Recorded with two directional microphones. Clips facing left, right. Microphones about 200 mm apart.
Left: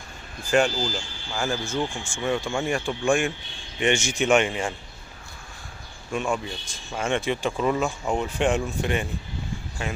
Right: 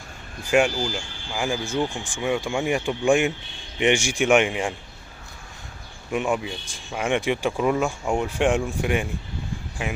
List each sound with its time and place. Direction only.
0.5 s speech: 15° right (ahead or behind)
6.1 s speech: 15° right (ahead or behind)